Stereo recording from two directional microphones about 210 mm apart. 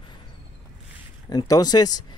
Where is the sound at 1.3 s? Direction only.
20° left (ahead or behind).